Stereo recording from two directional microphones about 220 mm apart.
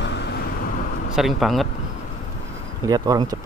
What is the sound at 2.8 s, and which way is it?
Speech, 20° right (ahead or behind).